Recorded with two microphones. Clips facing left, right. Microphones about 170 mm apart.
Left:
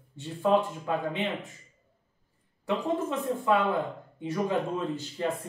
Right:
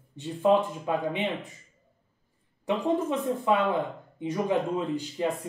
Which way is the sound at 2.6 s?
20° right (ahead or behind).